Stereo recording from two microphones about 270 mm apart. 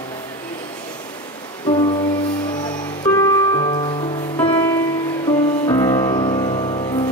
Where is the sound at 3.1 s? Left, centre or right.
Centre.